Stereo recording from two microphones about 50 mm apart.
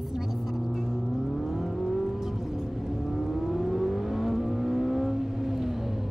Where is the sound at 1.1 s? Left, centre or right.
Centre.